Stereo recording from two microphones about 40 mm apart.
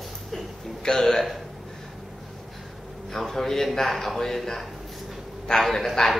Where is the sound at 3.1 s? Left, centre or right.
Centre.